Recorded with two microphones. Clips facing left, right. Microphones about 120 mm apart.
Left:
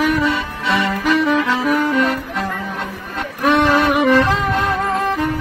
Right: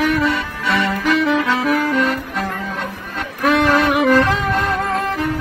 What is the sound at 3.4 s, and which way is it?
Music, centre (ahead or behind).